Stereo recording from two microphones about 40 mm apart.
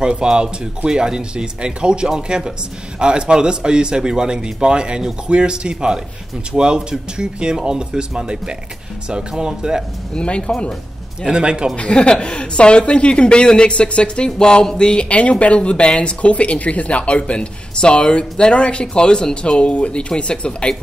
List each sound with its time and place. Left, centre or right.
0.0 s a man's voice: right
10.1 s speech: left
11.2 s a man's voice: right
11.7 s speech: left